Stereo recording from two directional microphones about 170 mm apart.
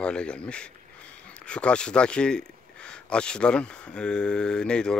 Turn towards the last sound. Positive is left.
turn(degrees=5)  # may be behind; listen again after turning